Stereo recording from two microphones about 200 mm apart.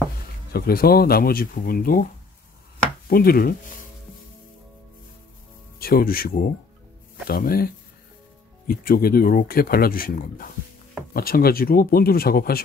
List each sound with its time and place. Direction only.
0.5 s speech: 50° left (ahead or behind)
3.1 s chopping: 50° left (ahead or behind)
5.8 s speech: 50° left (ahead or behind)